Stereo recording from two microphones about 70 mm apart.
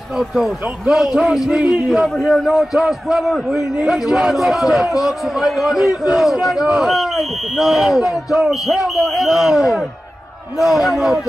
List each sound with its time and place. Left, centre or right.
0.2 s a man's voice: centre